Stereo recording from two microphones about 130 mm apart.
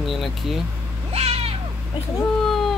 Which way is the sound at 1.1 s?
50° right (ahead or behind).